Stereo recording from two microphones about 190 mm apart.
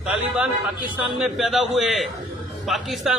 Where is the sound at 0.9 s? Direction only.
5° right (ahead or behind).